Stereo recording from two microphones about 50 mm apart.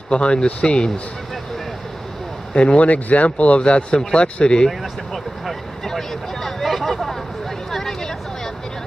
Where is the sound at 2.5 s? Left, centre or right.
Left.